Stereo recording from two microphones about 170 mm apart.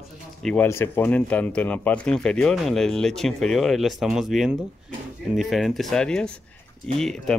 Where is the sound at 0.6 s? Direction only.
15° left (ahead or behind).